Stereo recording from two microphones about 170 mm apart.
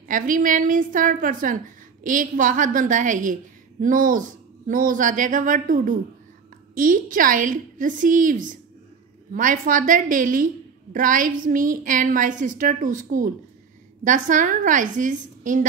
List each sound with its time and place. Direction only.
0.1 s a woman's voice: 50° right (ahead or behind)